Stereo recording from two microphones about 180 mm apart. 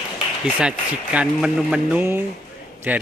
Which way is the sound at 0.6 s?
5° right (ahead or behind).